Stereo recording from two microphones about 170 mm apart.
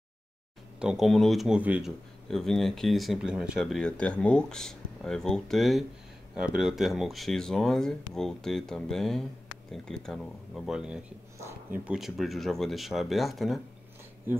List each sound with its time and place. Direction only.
0.7 s speech: 5° right (ahead or behind)